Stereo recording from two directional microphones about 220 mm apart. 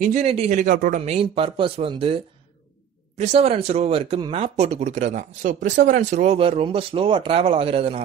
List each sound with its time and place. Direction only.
0.0 s speech: 30° right (ahead or behind)